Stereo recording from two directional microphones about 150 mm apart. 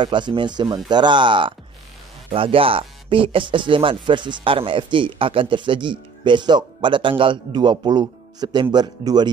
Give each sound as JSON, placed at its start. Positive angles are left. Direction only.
{"t": 0.0, "sound": "speech", "side_deg": -30}